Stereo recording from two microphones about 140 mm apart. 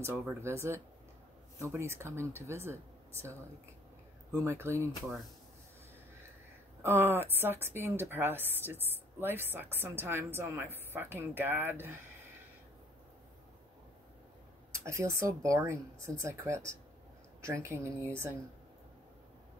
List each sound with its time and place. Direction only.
0.4 s speech: 20° right (ahead or behind)
6.8 s a woman's voice: 20° right (ahead or behind)
14.7 s speech: 20° right (ahead or behind)